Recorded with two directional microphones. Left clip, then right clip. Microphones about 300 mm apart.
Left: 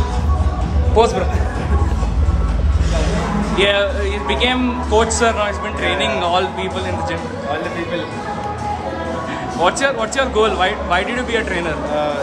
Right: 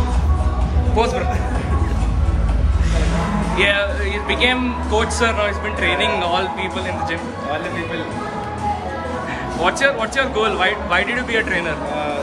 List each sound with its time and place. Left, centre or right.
0.9 s a man's voice: centre
3.5 s a man's voice: centre
9.6 s a man's voice: centre